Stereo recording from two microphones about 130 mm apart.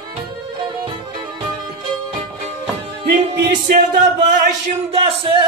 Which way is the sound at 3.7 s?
75° right (ahead or behind).